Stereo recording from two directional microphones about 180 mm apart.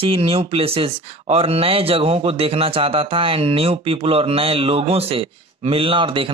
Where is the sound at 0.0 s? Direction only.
30° right (ahead or behind).